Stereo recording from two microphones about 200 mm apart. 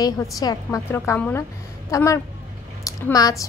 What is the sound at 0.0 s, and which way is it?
A woman's voice, 20° left (ahead or behind).